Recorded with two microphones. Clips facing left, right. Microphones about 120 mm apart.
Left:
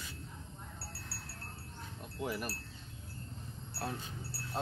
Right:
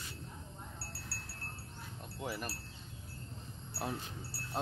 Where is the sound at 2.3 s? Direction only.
5° left (ahead or behind).